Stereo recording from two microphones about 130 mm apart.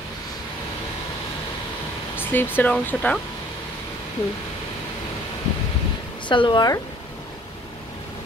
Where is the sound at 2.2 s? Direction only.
15° left (ahead or behind).